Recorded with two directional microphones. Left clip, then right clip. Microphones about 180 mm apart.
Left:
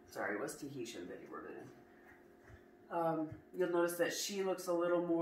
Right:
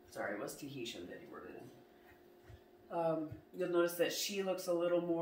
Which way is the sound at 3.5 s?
15° right (ahead or behind).